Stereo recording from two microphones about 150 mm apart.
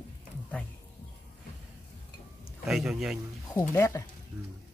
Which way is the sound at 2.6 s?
5° right (ahead or behind).